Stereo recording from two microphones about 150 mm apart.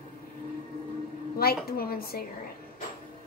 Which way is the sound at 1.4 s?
90° left.